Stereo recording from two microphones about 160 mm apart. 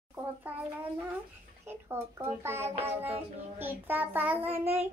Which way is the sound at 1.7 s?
15° right (ahead or behind).